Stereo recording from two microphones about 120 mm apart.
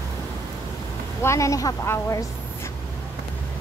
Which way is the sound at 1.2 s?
25° left (ahead or behind).